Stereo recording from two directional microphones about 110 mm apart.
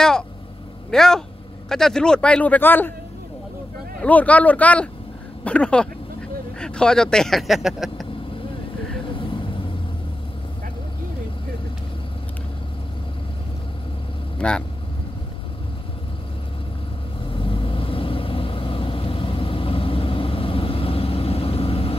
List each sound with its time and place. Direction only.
0.8 s speech: 5° left (ahead or behind)
4.0 s speech: 15° left (ahead or behind); by 8.1 s centre (ahead or behind)
9.2 s vehicle: 50° left (ahead or behind)
14.4 s speech: 10° left (ahead or behind)
17.3 s vehicle: 55° left (ahead or behind)